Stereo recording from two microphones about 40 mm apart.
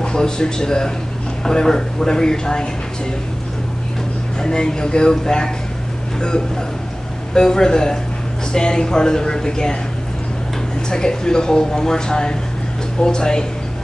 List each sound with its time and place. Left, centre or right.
0.0 s speech: left
4.4 s speech: centre
7.3 s speech: centre
10.9 s speech: centre